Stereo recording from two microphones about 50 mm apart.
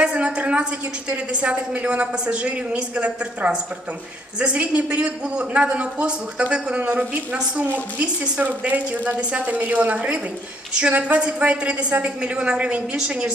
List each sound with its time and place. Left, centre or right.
0.0 s a sound: right
1.1 s a man's voice: right
11.1 s a man's voice: centre